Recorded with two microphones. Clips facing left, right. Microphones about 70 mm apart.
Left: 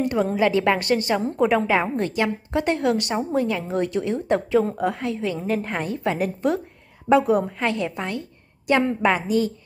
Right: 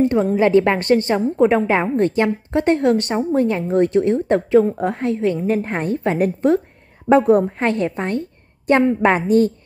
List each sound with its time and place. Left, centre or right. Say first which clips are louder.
0.0 s a woman's voice: right 5 dB; right